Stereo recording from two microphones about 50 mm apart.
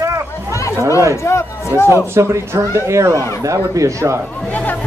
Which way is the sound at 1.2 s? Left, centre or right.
Left.